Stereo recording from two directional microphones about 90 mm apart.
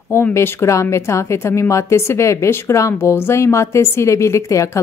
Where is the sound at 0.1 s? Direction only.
30° left (ahead or behind).